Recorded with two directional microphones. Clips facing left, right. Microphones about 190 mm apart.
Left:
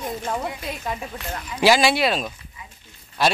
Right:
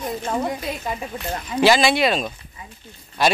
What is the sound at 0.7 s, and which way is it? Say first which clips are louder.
A man's voice: right 2 dB; centre (ahead or behind).